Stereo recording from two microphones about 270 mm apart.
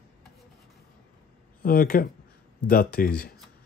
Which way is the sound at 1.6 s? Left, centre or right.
Left.